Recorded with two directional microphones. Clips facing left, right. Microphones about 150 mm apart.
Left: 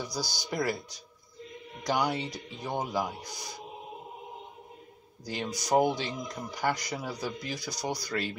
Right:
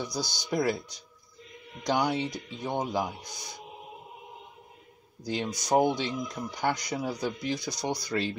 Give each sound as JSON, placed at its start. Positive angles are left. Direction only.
{"t": 0.0, "sound": "speech", "side_deg": -20}
{"t": 1.8, "sound": "speech", "side_deg": -20}
{"t": 5.2, "sound": "speech", "side_deg": -20}
{"t": 7.8, "sound": "speech", "side_deg": 0}